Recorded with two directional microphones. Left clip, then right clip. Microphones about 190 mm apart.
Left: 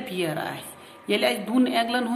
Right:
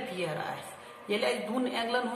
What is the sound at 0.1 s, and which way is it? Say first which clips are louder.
A woman's voice: left 8 dB; 45° left (ahead or behind).